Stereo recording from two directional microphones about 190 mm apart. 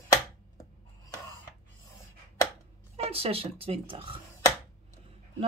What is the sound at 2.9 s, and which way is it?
Speech, 30° right (ahead or behind).